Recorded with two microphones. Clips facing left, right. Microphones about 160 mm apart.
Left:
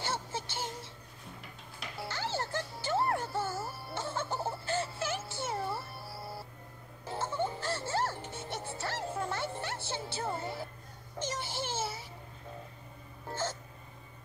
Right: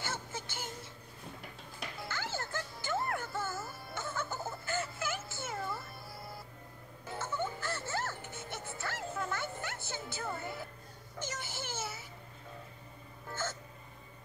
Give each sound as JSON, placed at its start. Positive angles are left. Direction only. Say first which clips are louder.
{"t": 0.0, "sound": "music", "louder": "left 4 dB", "side_deg": 30}
{"t": 2.0, "sound": "music", "louder": "left 5 dB", "side_deg": 30}
{"t": 11.2, "sound": "a sound", "louder": "left 5 dB", "side_deg": 30}
{"t": 13.3, "sound": "hiccup", "louder": "left 3 dB", "side_deg": 30}